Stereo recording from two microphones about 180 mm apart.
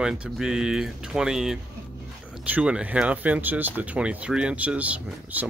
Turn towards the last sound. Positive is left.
turn(degrees=-10)  # may be behind; listen again after turning